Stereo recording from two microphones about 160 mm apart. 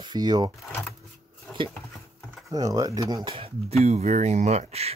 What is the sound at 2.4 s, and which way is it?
Speech, 20° right (ahead or behind).